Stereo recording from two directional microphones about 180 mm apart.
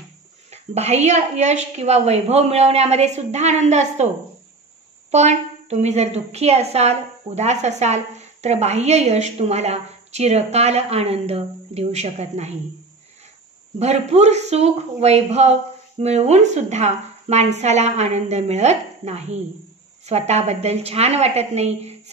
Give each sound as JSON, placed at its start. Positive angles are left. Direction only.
{"t": 0.5, "sound": "a woman's voice", "side_deg": -35}
{"t": 5.1, "sound": "a woman's voice", "side_deg": -40}
{"t": 13.7, "sound": "a woman's voice", "side_deg": -35}